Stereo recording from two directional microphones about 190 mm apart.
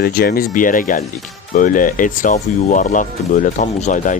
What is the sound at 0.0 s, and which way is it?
Speech, 55° left (ahead or behind).